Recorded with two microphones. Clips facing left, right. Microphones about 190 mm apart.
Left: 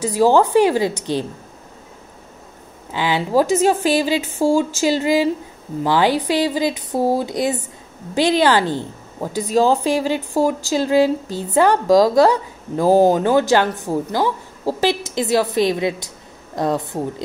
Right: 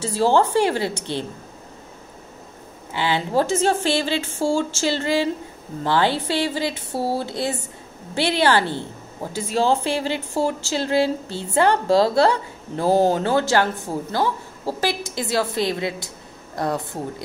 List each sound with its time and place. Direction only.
0.0 s speech: 15° left (ahead or behind)
2.9 s a woman's voice: 15° left (ahead or behind)